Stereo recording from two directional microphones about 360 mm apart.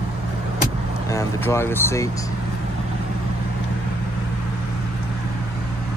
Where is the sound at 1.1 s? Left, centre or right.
Centre.